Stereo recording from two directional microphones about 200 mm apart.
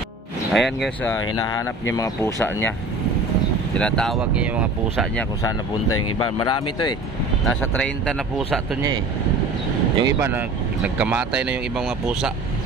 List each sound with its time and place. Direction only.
0.5 s speech: centre (ahead or behind)
2.0 s speech: 15° left (ahead or behind)
3.7 s speech: 5° left (ahead or behind)
6.1 s speech: 20° left (ahead or behind)
7.4 s speech: 5° left (ahead or behind)
9.9 s speech: 20° right (ahead or behind)
11.0 s speech: 5° right (ahead or behind)